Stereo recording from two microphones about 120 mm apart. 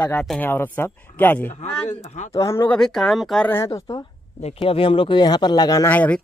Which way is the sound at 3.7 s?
25° left (ahead or behind).